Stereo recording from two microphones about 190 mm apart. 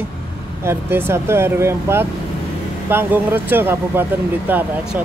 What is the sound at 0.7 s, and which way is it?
Speech, 10° right (ahead or behind).